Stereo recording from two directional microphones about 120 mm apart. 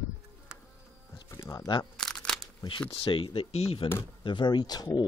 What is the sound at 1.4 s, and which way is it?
Speech, 35° left (ahead or behind).